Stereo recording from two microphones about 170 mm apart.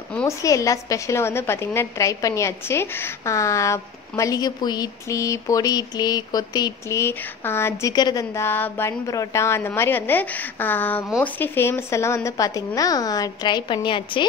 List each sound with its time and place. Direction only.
0.4 s a woman's voice: 20° left (ahead or behind)
8.3 s a woman's voice: 10° left (ahead or behind); by 14.2 s 30° left (ahead or behind)